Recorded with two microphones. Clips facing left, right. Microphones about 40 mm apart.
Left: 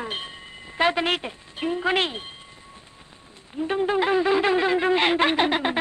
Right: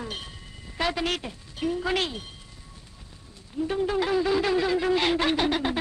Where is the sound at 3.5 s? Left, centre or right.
Left.